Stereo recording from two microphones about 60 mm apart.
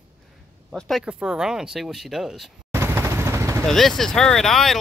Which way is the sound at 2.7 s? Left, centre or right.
Right.